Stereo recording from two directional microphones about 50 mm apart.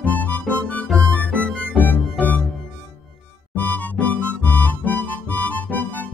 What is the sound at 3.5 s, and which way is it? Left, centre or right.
Music, left.